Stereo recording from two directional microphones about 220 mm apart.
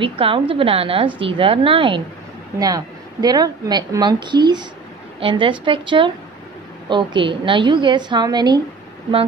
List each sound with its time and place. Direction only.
0.0 s a woman's voice: 25° right (ahead or behind)